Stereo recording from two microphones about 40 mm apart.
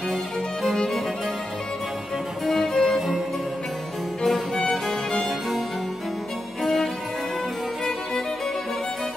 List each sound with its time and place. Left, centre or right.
0.7 s music: centre
2.4 s music: centre
6.6 s music: centre